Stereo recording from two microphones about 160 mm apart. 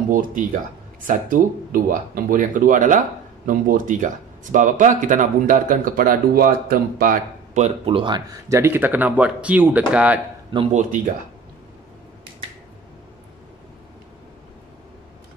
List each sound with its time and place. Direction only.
0.1 s speech: 60° right (ahead or behind)
7.5 s speech: 40° right (ahead or behind); by 10.2 s 10° right (ahead or behind)
10.7 s speech: 50° right (ahead or behind)